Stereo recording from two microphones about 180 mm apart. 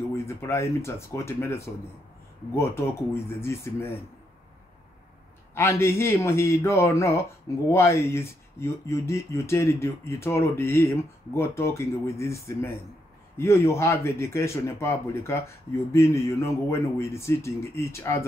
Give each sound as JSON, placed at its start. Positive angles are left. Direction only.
{"t": 0.1, "sound": "speech", "side_deg": 15}
{"t": 5.5, "sound": "speech", "side_deg": 15}